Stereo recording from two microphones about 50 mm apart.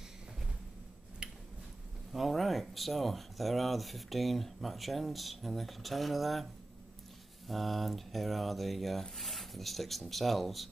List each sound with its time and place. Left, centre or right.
1.2 s a sound: centre
2.1 s speech: centre
7.4 s speech: centre